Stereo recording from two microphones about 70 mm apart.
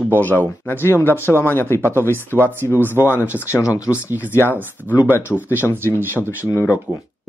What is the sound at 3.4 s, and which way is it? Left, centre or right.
Speech, left.